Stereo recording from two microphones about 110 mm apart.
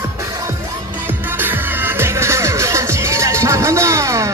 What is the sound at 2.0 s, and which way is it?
Music, 25° right (ahead or behind).